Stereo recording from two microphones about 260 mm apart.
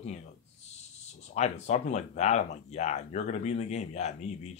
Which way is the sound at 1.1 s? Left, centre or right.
Left.